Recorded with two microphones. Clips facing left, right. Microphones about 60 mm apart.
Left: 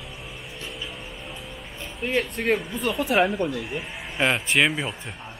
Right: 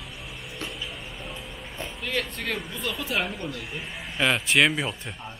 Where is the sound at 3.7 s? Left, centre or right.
Centre.